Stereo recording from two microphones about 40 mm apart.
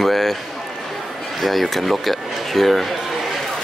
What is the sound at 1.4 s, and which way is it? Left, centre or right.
Speech, centre.